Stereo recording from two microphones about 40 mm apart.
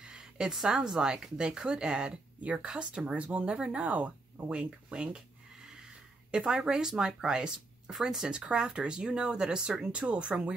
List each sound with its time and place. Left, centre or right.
0.0 s a sound: centre
0.5 s speech: centre; by 4.6 s right
4.6 s speech: right
5.1 s a sound: centre
6.3 s speech: right
8.3 s speech: right